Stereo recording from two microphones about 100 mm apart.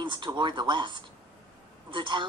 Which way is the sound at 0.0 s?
55° right (ahead or behind).